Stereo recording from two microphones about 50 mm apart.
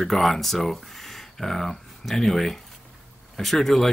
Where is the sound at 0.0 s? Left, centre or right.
Centre.